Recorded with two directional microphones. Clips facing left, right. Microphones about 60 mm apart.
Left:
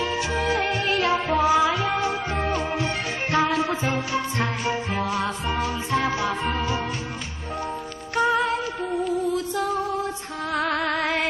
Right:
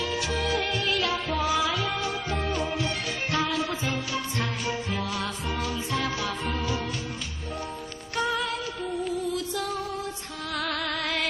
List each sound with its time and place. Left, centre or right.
0.0 s music: left
8.2 s music: left
10.5 s music: left